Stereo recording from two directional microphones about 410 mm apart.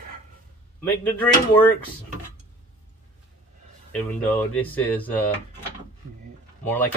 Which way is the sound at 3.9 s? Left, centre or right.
Centre.